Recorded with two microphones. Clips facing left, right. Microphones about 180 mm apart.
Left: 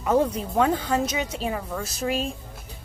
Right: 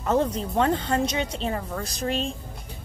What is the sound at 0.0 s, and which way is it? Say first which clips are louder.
A woman's voice: left 1 dB; 10° left (ahead or behind).